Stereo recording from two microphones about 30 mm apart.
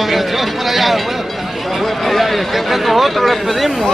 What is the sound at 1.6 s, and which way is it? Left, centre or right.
Speech, centre.